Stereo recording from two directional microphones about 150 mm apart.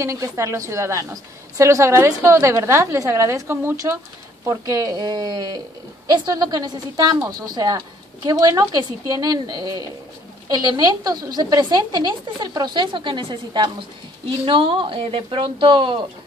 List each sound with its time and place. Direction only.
0.0 s a woman's voice: 20° right (ahead or behind)